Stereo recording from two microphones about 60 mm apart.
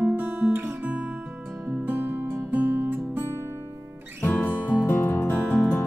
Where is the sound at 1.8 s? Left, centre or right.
Right.